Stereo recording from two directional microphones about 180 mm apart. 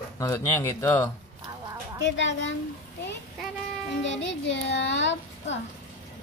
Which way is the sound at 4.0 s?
90° left.